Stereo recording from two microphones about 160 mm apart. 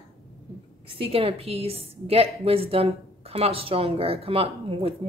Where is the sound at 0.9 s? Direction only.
35° right (ahead or behind).